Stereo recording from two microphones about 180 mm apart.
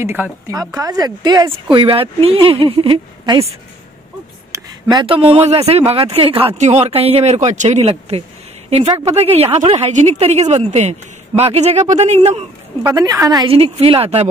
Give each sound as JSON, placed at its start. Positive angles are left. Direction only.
{"t": 0.0, "sound": "a woman's voice", "side_deg": -10}
{"t": 4.5, "sound": "a woman's voice", "side_deg": -20}
{"t": 12.8, "sound": "a woman's voice", "side_deg": -20}